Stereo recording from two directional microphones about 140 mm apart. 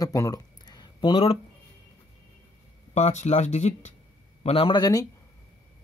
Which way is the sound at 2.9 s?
55° left (ahead or behind).